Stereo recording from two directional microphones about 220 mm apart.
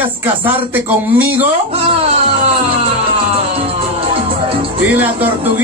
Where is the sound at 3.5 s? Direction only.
25° right (ahead or behind).